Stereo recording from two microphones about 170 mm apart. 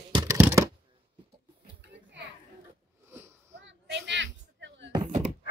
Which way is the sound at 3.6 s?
90° right.